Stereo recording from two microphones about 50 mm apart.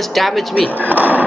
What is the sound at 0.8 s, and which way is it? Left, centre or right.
Speech, right.